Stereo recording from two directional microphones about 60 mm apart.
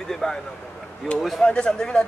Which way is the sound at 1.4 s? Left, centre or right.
Centre.